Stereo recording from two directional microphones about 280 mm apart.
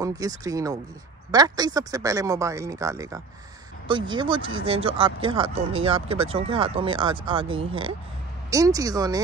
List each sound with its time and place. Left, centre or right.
0.0 s speech: centre